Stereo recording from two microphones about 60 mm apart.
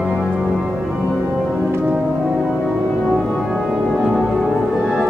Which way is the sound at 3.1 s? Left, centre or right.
Centre.